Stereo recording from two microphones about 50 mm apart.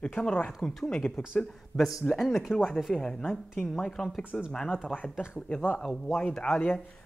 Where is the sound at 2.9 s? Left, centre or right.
Centre.